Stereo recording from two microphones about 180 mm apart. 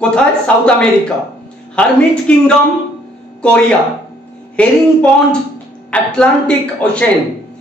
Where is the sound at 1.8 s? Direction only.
5° left (ahead or behind).